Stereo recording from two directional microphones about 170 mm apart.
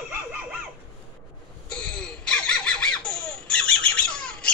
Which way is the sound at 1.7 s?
5° left (ahead or behind).